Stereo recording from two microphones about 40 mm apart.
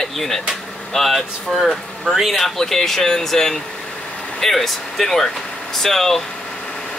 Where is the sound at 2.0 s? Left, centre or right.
Centre.